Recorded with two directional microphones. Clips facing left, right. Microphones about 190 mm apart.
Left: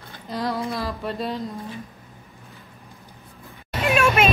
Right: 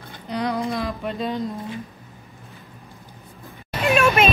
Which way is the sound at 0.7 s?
Centre (ahead or behind).